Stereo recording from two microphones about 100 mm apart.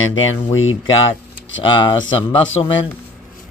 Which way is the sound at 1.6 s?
50° left (ahead or behind).